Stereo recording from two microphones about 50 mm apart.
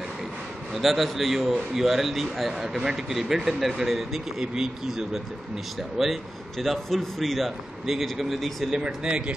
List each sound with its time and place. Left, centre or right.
0.7 s a man's voice: centre
8.7 s speech: centre